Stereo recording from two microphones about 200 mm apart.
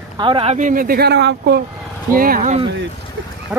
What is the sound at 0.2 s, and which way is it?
Speech, 25° right (ahead or behind).